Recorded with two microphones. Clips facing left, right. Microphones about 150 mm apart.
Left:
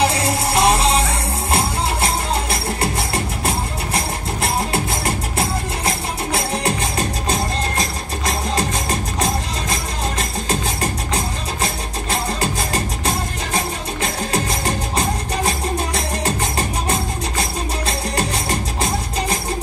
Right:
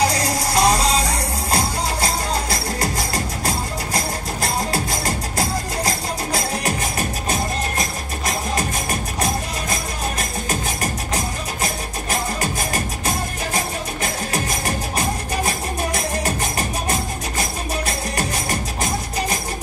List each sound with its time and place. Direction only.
0.0 s music: 25° left (ahead or behind)
9.2 s music: 30° left (ahead or behind)